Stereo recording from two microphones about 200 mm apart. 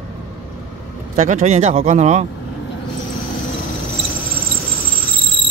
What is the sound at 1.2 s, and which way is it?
Speech, 35° right (ahead or behind).